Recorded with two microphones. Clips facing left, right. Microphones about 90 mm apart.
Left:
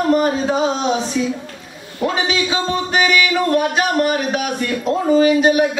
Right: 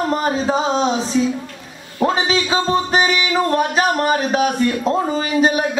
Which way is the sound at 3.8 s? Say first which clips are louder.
Even; 35° right (ahead or behind).